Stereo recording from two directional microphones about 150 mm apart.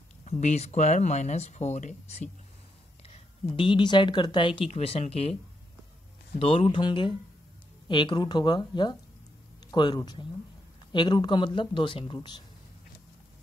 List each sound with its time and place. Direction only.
0.2 s speech: 50° left (ahead or behind)
3.5 s speech: 35° left (ahead or behind)
6.3 s speech: 40° left (ahead or behind)